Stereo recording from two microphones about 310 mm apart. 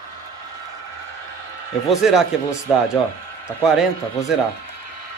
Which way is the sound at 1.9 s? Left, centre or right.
Centre.